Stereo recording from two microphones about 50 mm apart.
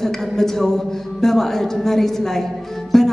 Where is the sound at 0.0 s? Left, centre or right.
Centre.